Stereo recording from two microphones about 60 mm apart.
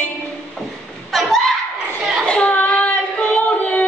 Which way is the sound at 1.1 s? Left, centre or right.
Centre.